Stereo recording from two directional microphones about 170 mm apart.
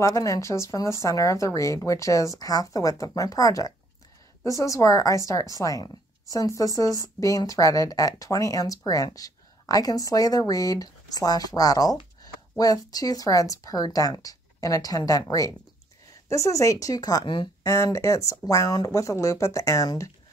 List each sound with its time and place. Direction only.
0.0 s speech: 20° left (ahead or behind)
17.7 s speech: 15° left (ahead or behind)